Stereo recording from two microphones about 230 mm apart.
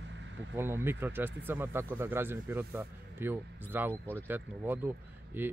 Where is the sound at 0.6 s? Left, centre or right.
Centre.